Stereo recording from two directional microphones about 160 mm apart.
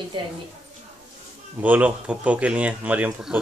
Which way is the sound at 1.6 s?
10° right (ahead or behind).